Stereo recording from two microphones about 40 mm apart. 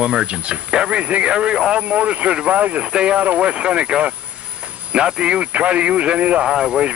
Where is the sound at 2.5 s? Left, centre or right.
Right.